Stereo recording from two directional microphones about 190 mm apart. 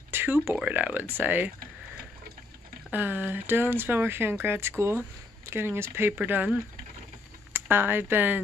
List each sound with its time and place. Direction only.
0.1 s speech: 10° right (ahead or behind)
2.9 s speech: 10° right (ahead or behind)